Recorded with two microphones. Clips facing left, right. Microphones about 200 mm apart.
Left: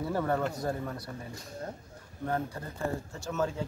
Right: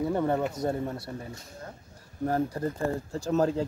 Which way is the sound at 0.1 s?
20° right (ahead or behind).